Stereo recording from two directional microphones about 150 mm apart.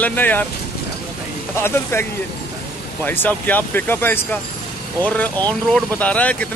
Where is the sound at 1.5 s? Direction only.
15° left (ahead or behind).